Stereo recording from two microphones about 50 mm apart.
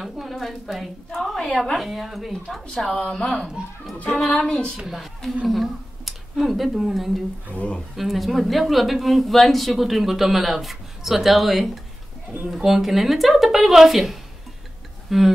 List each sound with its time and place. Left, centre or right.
0.0 s speech: centre
4.4 s speech: centre
4.8 s speech: centre
7.5 s speech: left
7.9 s speech: centre